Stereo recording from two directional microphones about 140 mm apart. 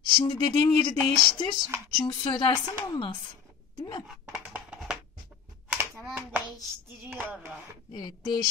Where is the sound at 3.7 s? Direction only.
30° left (ahead or behind).